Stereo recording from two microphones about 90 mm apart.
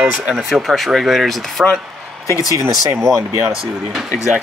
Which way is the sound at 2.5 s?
40° right (ahead or behind).